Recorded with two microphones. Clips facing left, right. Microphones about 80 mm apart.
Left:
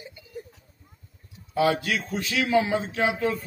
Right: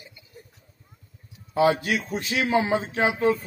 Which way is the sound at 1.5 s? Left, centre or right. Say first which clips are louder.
Right 2 dB; right.